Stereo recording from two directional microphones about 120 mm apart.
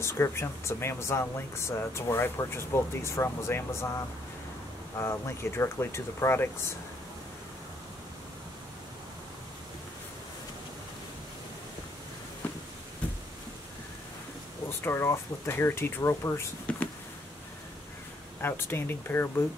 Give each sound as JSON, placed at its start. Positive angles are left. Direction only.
{"t": 0.0, "sound": "speech", "side_deg": 25}
{"t": 4.9, "sound": "speech", "side_deg": 25}
{"t": 13.0, "sound": "a sound", "side_deg": 10}
{"t": 14.7, "sound": "speech", "side_deg": 20}
{"t": 16.7, "sound": "a sound", "side_deg": 10}
{"t": 18.4, "sound": "speech", "side_deg": 20}